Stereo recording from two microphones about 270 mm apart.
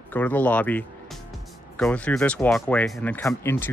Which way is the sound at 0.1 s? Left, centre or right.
Centre.